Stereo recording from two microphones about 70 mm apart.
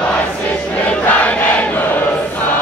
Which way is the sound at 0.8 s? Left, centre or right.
Centre.